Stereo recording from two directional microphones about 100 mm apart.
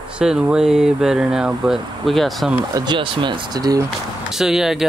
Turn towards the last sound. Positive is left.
turn(degrees=-5)  # may be behind; listen again after turning